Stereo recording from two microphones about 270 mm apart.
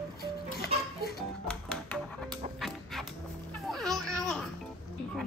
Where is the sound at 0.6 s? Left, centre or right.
Left.